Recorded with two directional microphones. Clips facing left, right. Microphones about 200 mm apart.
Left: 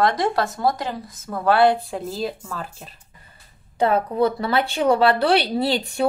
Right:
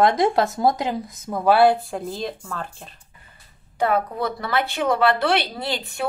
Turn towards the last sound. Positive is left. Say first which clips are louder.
# left 6 dB
turn(degrees=35)  # may be behind; listen again after turning